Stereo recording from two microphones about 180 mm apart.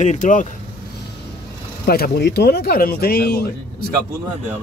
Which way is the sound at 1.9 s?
60° left (ahead or behind).